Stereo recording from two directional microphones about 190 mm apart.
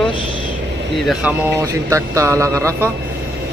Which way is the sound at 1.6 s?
15° right (ahead or behind).